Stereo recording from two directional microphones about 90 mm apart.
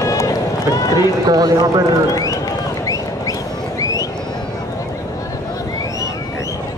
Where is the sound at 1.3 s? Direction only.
40° right (ahead or behind).